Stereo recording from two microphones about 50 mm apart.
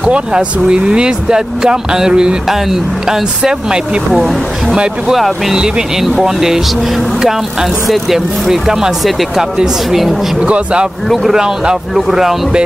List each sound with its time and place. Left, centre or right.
0.0 s speech: right
4.1 s speech: centre
7.9 s speech: centre
10.4 s a man's voice: right